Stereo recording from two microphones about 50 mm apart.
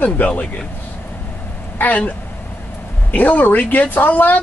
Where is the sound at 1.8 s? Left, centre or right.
Left.